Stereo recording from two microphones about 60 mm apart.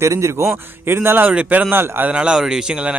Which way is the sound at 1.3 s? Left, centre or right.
Right.